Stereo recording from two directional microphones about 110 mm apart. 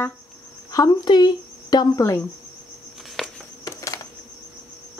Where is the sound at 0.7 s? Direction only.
35° left (ahead or behind).